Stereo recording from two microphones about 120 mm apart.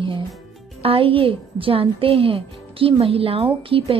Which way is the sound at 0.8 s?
50° right (ahead or behind).